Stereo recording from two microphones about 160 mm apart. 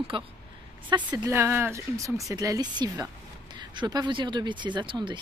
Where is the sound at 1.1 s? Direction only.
15° right (ahead or behind).